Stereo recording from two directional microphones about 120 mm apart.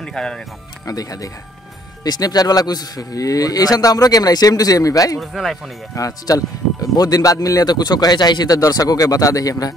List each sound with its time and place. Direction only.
0.0 s speech: 5° left (ahead or behind)
0.8 s speech: 30° left (ahead or behind)
5.2 s speech: centre (ahead or behind)
5.9 s speech: 30° left (ahead or behind)